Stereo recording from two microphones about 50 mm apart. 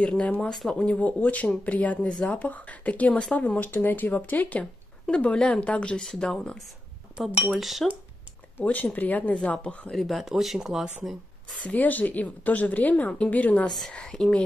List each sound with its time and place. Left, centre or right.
0.0 s speech: left
0.5 s speech: centre
0.7 s speech: left
2.0 s speech: centre
2.3 s speech: left
5.0 s speech: centre
7.2 s speech: centre
8.6 s speech: left
9.9 s speech: centre
11.6 s speech: left
13.7 s speech: centre
13.9 s speech: centre